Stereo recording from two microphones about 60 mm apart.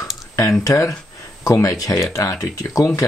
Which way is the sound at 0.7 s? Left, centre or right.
Left.